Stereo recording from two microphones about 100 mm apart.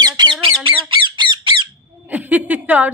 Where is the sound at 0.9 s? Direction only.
55° right (ahead or behind).